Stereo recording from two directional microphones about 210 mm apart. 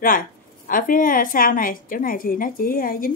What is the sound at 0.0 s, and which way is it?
A woman's voice, 40° left (ahead or behind).